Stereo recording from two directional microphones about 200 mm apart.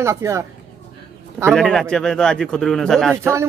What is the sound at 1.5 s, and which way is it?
Speech, centre (ahead or behind).